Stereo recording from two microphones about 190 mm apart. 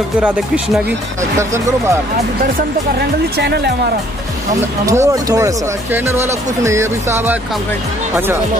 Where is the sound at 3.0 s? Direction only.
60° right (ahead or behind).